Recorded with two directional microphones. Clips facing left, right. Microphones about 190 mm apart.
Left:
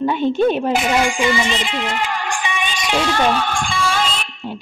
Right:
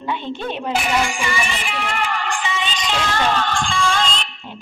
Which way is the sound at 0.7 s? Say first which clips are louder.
Left 3 dB; 15° left (ahead or behind).